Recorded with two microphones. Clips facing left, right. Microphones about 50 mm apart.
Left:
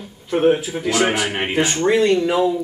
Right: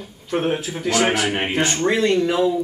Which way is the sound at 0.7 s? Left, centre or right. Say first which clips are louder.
Left 1 dB; centre.